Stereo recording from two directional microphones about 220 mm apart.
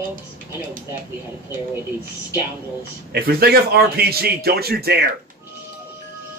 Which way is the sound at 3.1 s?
45° right (ahead or behind).